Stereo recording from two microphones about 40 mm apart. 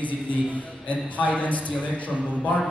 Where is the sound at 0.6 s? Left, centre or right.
Left.